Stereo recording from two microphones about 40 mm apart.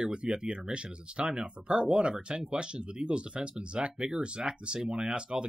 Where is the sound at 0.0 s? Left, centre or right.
Right.